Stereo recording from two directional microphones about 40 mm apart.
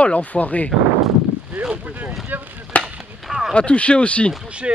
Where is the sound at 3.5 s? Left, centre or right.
Left.